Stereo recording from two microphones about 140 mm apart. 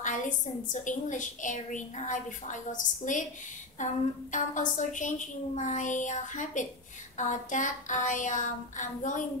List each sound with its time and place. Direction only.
0.7 s a woman's voice: 65° left (ahead or behind)